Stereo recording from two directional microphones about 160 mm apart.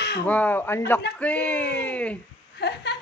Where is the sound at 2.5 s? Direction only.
90° left.